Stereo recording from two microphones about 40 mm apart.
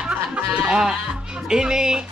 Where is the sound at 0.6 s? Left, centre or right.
Centre.